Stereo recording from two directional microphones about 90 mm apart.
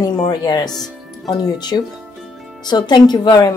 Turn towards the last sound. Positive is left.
turn(degrees=50)  # may be behind; listen again after turning